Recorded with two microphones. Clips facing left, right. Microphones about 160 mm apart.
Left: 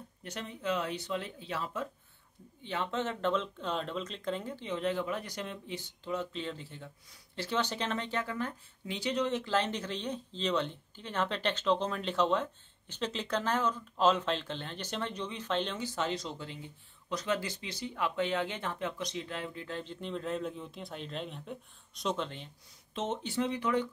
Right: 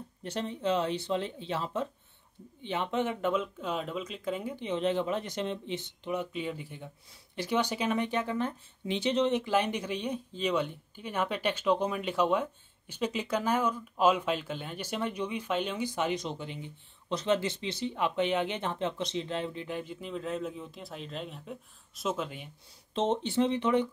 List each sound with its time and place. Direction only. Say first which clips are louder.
0.2 s speech: right 7 dB; 30° right (ahead or behind); by 22.5 s 5° right (ahead or behind)
22.9 s speech: right 6 dB; 30° right (ahead or behind)